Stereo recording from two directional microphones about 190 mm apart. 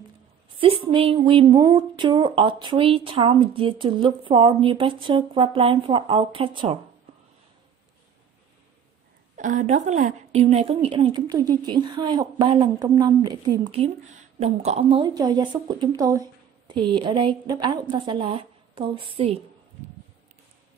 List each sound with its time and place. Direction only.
0.6 s a woman's voice: 30° right (ahead or behind)
9.4 s a woman's voice: 40° right (ahead or behind); by 13.7 s 20° right (ahead or behind)
13.7 s a woman's voice: 35° right (ahead or behind)